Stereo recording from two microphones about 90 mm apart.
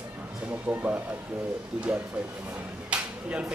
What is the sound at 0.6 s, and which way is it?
Speech, 25° right (ahead or behind).